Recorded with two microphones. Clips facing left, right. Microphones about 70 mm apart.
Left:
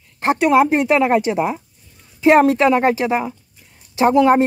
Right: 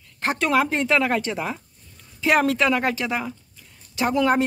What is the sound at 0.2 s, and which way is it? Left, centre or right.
Speech, left.